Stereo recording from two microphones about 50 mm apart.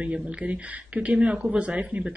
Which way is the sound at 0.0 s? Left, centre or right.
Right.